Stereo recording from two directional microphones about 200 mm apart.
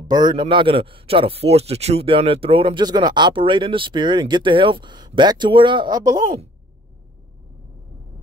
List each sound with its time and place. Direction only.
0.1 s speech: 20° right (ahead or behind)